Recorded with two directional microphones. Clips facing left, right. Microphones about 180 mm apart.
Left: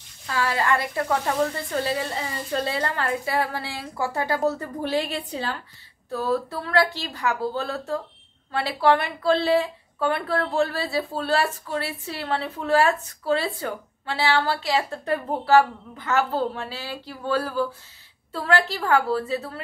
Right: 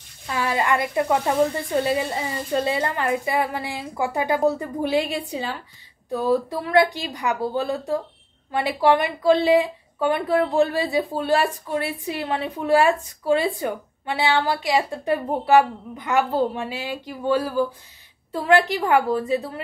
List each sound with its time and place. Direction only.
0.3 s speech: 20° right (ahead or behind)